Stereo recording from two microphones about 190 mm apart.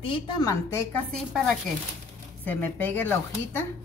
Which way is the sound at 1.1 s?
Centre (ahead or behind).